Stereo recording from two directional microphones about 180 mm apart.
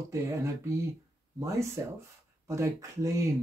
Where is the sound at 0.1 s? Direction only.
15° right (ahead or behind).